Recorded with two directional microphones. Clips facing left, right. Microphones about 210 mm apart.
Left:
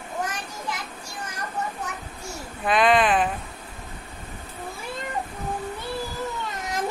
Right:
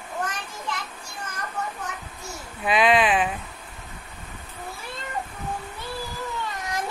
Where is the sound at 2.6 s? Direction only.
5° right (ahead or behind).